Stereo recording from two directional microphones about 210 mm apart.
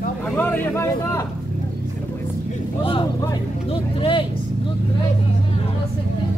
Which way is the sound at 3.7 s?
25° left (ahead or behind).